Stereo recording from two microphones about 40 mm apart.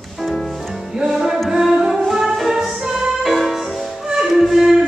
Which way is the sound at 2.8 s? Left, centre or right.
Centre.